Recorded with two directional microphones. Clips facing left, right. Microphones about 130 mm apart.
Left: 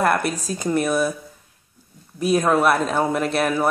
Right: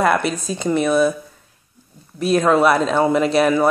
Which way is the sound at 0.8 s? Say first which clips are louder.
Right 7 dB; 10° left (ahead or behind).